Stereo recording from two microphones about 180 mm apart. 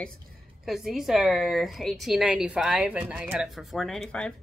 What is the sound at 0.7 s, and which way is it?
A woman's voice, centre (ahead or behind).